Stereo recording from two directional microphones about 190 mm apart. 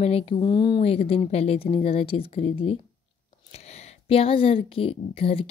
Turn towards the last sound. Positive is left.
turn(degrees=30)  # may be behind; listen again after turning